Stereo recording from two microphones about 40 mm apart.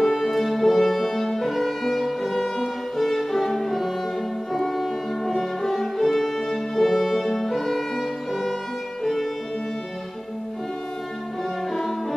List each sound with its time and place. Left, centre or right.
0.1 s music: centre
11.7 s music: centre